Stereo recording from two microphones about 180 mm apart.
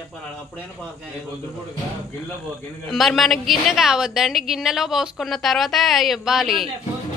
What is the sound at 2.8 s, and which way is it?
A woman's voice, centre (ahead or behind).